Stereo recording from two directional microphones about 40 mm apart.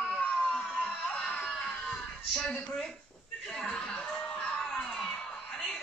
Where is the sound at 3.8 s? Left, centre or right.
Left.